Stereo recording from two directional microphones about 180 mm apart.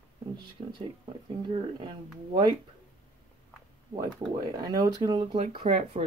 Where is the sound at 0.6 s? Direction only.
30° right (ahead or behind).